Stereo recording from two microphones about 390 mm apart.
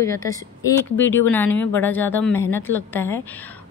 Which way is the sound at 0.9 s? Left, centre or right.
Left.